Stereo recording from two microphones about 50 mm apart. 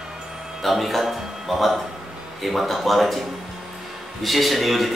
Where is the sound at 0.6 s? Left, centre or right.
Centre.